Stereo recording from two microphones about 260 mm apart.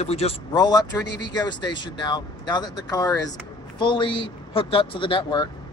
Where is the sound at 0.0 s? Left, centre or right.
Left.